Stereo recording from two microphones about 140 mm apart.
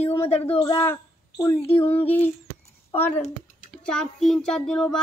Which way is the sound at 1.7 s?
45° left (ahead or behind).